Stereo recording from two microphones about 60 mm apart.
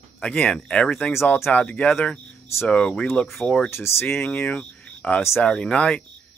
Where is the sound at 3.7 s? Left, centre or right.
Left.